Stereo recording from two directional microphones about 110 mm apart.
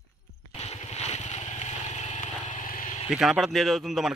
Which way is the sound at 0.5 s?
80° left.